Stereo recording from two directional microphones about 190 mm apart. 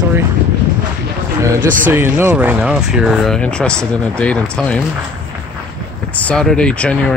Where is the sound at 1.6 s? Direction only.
45° right (ahead or behind).